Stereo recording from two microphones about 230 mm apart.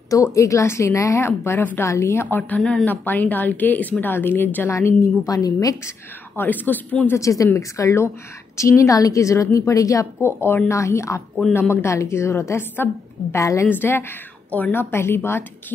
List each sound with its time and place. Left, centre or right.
0.1 s a woman's voice: centre